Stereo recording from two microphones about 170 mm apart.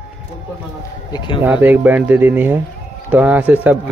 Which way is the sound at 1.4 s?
10° right (ahead or behind).